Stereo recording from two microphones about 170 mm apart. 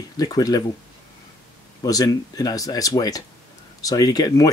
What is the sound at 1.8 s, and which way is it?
Speech, 20° left (ahead or behind).